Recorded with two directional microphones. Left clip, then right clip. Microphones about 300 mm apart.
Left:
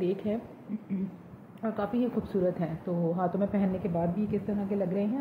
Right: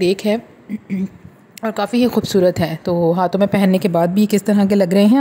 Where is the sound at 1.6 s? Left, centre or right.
Right.